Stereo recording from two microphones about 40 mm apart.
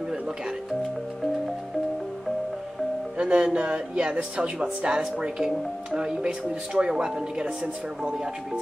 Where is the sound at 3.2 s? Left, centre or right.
Right.